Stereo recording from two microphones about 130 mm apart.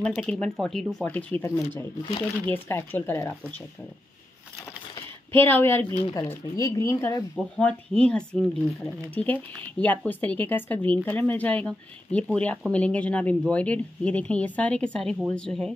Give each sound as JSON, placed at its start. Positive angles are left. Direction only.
{"t": 0.2, "sound": "speech", "side_deg": 5}
{"t": 1.1, "sound": "speech", "side_deg": 15}
{"t": 5.3, "sound": "speech", "side_deg": 15}
{"t": 7.3, "sound": "speech", "side_deg": 5}